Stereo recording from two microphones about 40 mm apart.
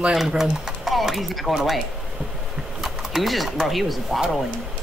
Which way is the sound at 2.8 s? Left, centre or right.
Centre.